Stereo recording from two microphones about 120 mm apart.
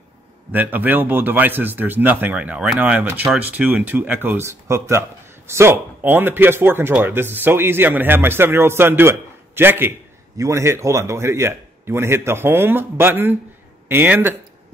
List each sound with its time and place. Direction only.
0.5 s speech: 15° right (ahead or behind)